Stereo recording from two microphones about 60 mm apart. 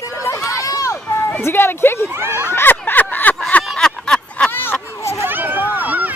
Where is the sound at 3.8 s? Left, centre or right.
Centre.